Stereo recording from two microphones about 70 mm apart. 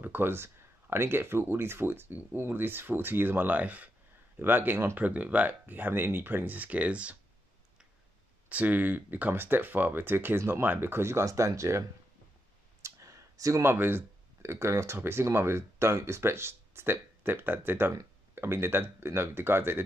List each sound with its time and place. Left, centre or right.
0.0 s speech: right
8.5 s speech: right
12.8 s a sound: right
13.7 s speech: right